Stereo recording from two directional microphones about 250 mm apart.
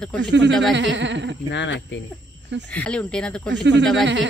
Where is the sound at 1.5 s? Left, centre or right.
Left.